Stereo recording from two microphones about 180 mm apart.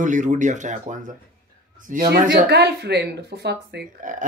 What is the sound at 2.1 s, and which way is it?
Speech, 55° right (ahead or behind).